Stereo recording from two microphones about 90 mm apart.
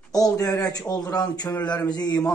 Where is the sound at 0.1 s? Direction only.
40° left (ahead or behind).